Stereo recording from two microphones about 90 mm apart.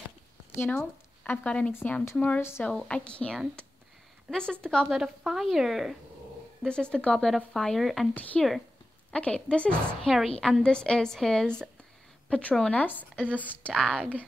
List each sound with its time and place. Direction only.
0.6 s a woman's voice: 20° left (ahead or behind)
4.8 s speech: centre (ahead or behind)
6.6 s speech: 10° left (ahead or behind)
8.1 s a woman's voice: 15° left (ahead or behind)
8.4 s speech: centre (ahead or behind)
9.1 s a woman's voice: 10° left (ahead or behind)